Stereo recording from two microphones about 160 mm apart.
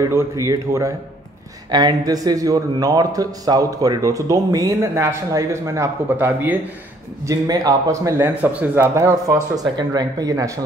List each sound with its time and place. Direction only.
0.1 s speech: 20° right (ahead or behind)
7.2 s speech: 25° right (ahead or behind)